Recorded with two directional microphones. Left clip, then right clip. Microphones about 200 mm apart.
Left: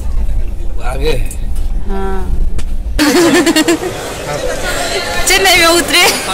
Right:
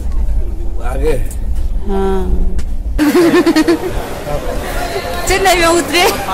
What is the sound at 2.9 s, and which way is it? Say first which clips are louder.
Speech: left 1 dB; centre (ahead or behind).